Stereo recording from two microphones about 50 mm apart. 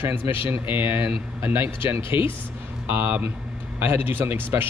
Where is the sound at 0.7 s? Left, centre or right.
Right.